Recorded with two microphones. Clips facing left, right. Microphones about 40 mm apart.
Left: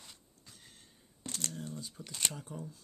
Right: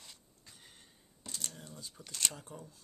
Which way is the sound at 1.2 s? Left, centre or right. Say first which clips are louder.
Left 4 dB; left.